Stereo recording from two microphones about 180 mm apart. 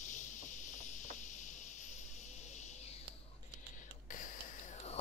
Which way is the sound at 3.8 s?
45° left (ahead or behind).